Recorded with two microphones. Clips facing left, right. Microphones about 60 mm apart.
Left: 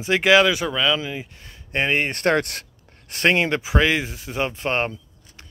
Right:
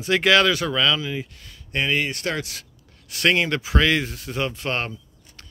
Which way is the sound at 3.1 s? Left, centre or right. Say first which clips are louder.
Left 1 dB; left.